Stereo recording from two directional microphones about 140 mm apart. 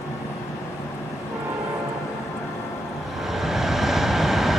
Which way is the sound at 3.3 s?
Centre (ahead or behind).